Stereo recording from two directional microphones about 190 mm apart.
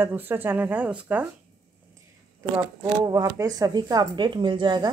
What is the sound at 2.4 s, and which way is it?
Speech, 15° right (ahead or behind).